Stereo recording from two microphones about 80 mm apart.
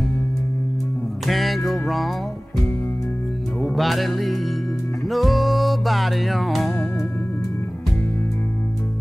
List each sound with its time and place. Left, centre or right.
1.2 s music: centre
3.6 s music: centre
6.7 s music: left